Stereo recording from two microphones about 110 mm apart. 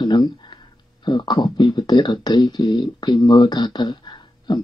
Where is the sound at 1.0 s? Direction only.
45° left (ahead or behind).